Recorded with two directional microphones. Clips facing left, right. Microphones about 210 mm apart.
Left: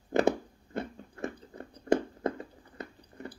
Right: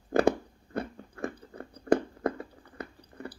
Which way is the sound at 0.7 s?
20° left (ahead or behind).